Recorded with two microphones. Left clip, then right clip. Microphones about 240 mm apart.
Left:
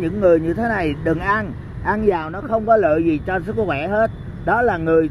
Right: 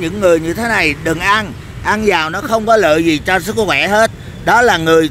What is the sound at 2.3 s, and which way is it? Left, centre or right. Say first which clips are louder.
Speech: right 5 dB; right.